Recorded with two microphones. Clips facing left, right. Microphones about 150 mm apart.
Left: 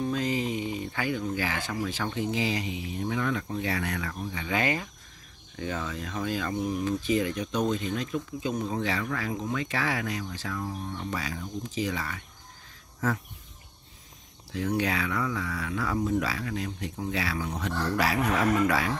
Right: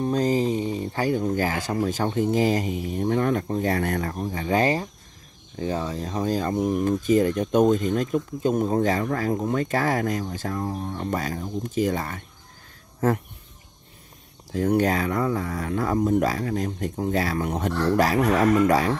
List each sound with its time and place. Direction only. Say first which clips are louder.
0.0 s speech: right 6 dB; 40° right (ahead or behind)
14.5 s speech: right 7 dB; 45° right (ahead or behind)